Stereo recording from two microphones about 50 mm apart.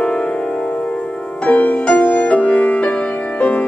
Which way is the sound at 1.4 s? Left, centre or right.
Left.